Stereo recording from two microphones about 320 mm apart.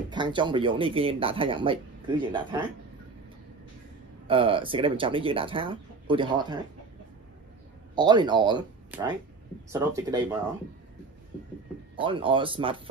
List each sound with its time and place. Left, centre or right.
0.1 s speech: centre
4.3 s speech: centre
7.9 s speech: centre
12.0 s speech: centre